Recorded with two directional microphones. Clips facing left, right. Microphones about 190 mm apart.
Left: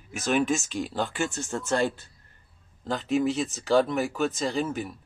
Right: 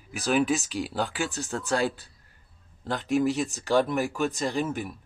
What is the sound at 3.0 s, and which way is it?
Speech, centre (ahead or behind).